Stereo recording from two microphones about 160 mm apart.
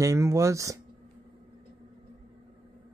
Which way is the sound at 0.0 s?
20° right (ahead or behind).